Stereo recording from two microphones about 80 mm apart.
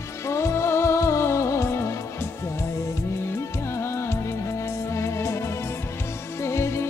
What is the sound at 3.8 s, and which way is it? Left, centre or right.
Music, left.